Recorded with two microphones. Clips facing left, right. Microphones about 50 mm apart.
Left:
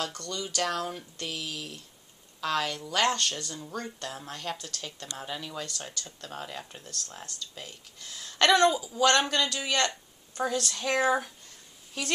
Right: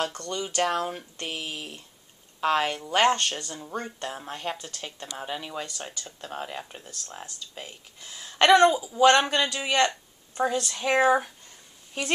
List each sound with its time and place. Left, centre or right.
0.0 s speech: right